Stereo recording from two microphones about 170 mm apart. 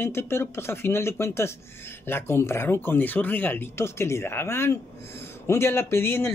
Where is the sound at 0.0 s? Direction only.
15° left (ahead or behind).